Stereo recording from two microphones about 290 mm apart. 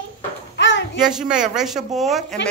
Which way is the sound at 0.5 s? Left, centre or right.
Left.